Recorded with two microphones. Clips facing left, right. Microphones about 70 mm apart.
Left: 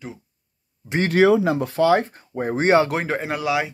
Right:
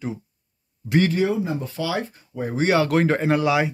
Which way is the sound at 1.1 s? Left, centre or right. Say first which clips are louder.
Left 6 dB; left.